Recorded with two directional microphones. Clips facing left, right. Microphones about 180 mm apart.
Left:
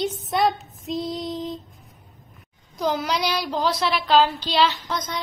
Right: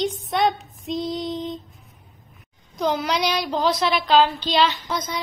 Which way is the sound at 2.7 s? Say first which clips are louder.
Right 1 dB; 5° left (ahead or behind).